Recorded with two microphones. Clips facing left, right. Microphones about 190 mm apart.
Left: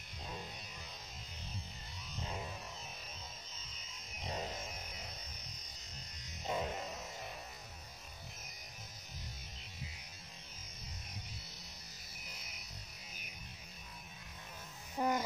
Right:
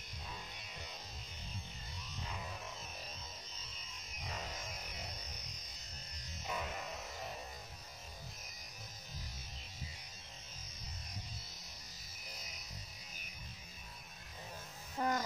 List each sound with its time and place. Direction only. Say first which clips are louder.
4.2 s a sound: left 5 dB; 30° left (ahead or behind)
6.4 s music: left 4 dB; 25° left (ahead or behind)
15.0 s music: left 2 dB; 15° left (ahead or behind)